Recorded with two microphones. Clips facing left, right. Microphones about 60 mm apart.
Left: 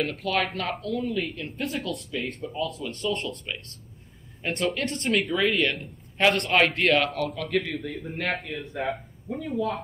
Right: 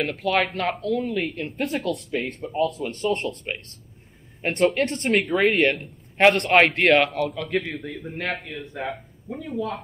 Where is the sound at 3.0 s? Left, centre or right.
Right.